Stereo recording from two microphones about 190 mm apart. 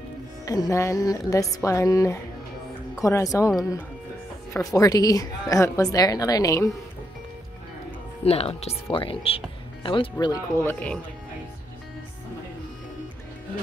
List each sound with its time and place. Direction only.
0.5 s speech: 15° left (ahead or behind)
4.6 s a woman's voice: 15° left (ahead or behind)
8.2 s speech: 30° left (ahead or behind); by 11.0 s 10° left (ahead or behind)